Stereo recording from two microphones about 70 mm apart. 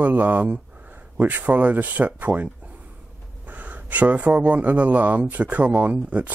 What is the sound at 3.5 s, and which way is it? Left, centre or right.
Speech, right.